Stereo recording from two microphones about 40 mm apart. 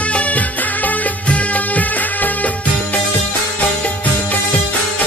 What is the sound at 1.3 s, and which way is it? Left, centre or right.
Music of bollywood, left.